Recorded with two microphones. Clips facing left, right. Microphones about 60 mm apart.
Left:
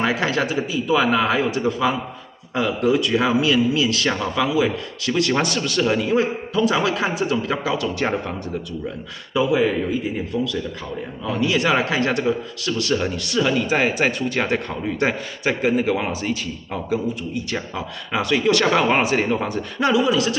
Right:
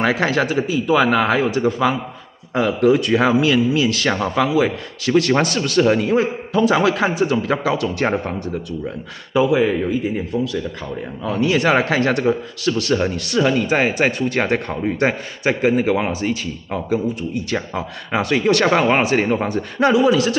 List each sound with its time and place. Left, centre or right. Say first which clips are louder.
0.0 s a man's voice: right 3 dB; right
9.5 s a man's voice: right 2 dB; centre
11.2 s a man's voice: right 3 dB; right
19.2 s a man's voice: right 3 dB; right
19.5 s a man's voice: right 5 dB; right